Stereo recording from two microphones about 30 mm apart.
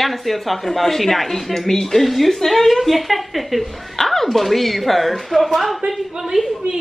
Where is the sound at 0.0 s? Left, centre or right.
Centre.